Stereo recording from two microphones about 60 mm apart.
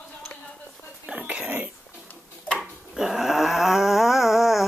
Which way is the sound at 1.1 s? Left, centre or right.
Right.